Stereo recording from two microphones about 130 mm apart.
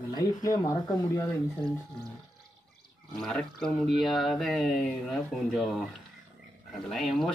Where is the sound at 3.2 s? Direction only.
5° left (ahead or behind).